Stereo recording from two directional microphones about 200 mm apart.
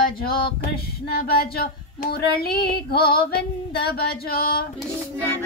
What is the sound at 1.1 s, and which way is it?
Female singing, 50° left (ahead or behind).